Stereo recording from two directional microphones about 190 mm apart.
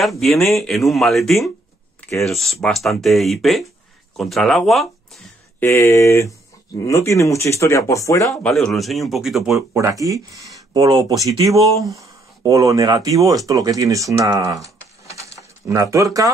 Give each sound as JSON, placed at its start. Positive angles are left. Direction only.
{"t": 0.2, "sound": "speech", "side_deg": 0}
{"t": 5.6, "sound": "speech", "side_deg": 15}
{"t": 8.4, "sound": "speech", "side_deg": 5}
{"t": 9.5, "sound": "speech", "side_deg": -15}